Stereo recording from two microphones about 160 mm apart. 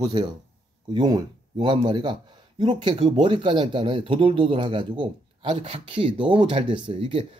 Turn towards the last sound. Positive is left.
turn(degrees=-35)  # may be behind; listen again after turning